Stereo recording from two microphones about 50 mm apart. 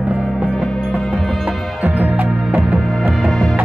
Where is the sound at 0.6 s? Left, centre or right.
Centre.